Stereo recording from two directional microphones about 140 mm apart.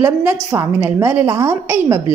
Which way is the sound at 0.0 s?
15° right (ahead or behind).